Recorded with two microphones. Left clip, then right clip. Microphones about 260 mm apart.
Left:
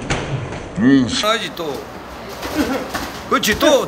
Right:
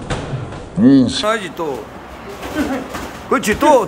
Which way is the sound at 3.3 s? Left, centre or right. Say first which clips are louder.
Right 2 dB; centre.